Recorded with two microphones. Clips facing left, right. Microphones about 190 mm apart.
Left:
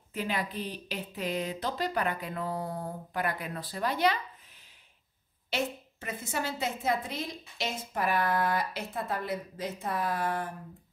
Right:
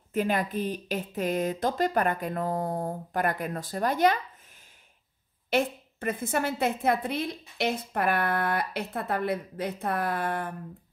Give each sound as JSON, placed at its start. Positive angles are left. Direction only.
{"t": 0.1, "sound": "speech", "side_deg": -50}
{"t": 5.5, "sound": "a woman's voice", "side_deg": -55}